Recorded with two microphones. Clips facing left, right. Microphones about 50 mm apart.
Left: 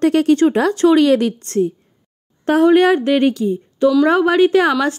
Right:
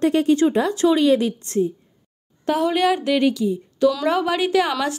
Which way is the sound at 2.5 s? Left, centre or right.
Left.